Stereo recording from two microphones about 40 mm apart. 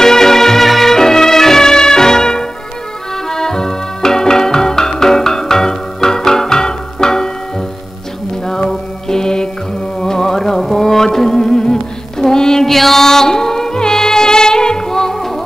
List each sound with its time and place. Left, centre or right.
0.0 s music: centre
8.5 s mantra: centre
9.9 s music: centre